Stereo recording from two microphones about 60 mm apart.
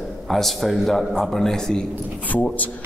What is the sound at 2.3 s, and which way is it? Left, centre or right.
Speech, left.